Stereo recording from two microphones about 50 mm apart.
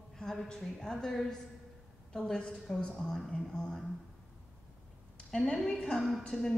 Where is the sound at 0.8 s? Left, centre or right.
Centre.